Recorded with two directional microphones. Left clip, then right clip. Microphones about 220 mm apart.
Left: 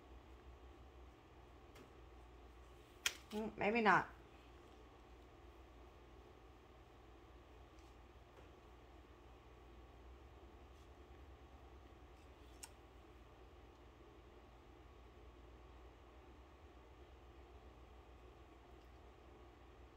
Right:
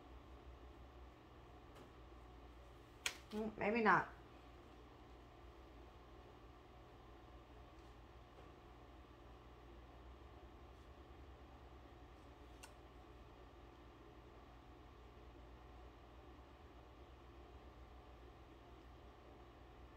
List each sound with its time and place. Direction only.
3.0 s speech: 15° left (ahead or behind)